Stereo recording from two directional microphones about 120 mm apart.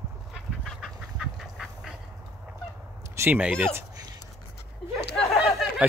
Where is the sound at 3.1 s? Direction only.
15° right (ahead or behind).